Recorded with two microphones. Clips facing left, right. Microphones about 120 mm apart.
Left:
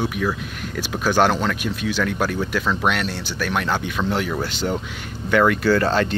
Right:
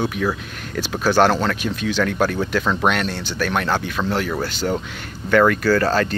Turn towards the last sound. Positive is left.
turn(degrees=20)  # may be behind; listen again after turning